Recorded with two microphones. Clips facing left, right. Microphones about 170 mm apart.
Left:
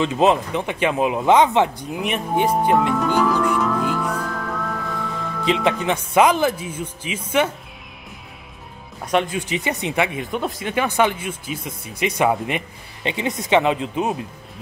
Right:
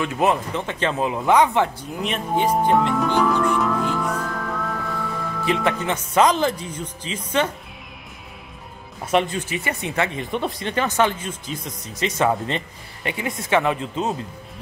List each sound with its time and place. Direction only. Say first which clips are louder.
0.0 s speech: left 3 dB; 20° left (ahead or behind)
2.0 s music: left 1 dB; 10° left (ahead or behind)
5.4 s speech: left 2 dB; 20° left (ahead or behind)
9.0 s speech: even; centre (ahead or behind)
9.4 s speech: left 3 dB; 20° left (ahead or behind)
10.2 s speech: even; 5° left (ahead or behind)